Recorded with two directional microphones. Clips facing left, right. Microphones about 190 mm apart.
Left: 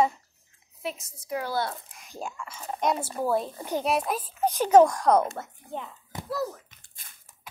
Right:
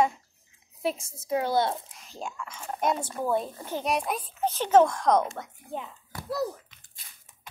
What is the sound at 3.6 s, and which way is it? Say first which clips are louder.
Speech: left 4 dB; 15° left (ahead or behind).